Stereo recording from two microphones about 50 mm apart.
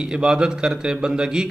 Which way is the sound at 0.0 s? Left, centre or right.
Centre.